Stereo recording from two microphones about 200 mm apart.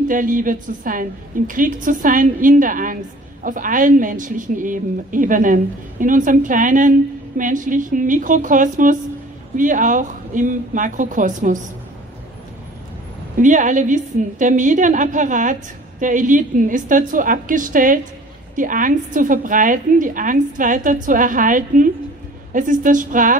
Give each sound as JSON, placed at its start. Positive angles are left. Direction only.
{"t": 0.1, "sound": "a woman's voice", "side_deg": -40}
{"t": 13.4, "sound": "a woman's voice", "side_deg": -40}